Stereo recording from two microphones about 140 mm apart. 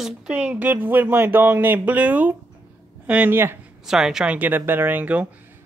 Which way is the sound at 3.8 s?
Centre (ahead or behind).